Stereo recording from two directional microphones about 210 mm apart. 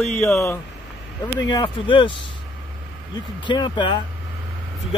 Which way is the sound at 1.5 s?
20° left (ahead or behind).